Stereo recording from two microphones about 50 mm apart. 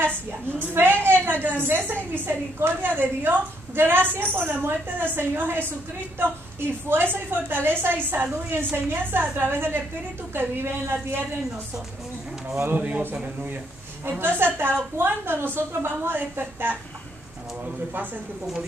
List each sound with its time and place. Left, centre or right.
0.3 s a woman's voice: right
12.7 s a man's voice: right
14.0 s a woman's voice: right